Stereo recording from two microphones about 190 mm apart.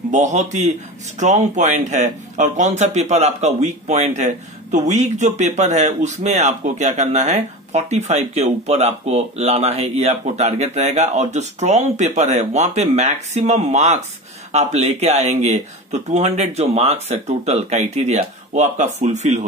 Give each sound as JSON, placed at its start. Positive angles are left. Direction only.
{"t": 0.1, "sound": "speech", "side_deg": -40}